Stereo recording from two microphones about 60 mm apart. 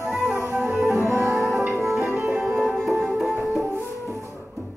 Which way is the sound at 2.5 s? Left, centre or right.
Centre.